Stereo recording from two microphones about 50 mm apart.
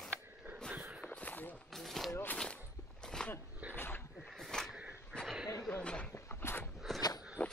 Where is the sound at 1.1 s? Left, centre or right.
Left.